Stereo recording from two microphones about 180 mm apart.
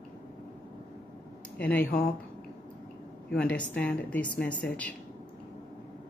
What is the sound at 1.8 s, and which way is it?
Speech, 50° left (ahead or behind).